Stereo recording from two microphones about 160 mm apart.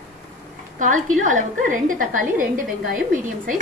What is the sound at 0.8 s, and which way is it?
A woman's voice, 50° right (ahead or behind).